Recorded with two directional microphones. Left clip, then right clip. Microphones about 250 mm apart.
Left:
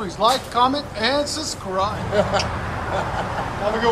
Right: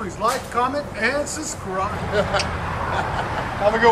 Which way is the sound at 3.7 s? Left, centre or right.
Centre.